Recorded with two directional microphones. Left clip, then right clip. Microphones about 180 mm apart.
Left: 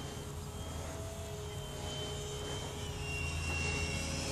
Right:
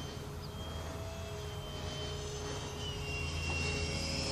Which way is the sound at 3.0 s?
10° right (ahead or behind).